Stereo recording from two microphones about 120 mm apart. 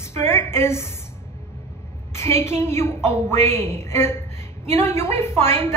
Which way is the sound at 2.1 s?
20° left (ahead or behind).